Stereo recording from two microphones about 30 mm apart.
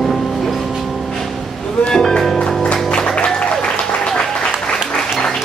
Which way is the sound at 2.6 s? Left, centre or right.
Left.